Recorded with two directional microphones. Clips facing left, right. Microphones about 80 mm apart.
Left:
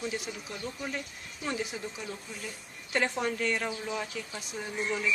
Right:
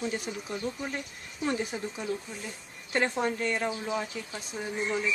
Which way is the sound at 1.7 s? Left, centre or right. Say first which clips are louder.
Right 3 dB; right.